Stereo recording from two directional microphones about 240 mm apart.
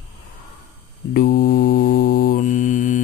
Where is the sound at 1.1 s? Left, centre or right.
Left.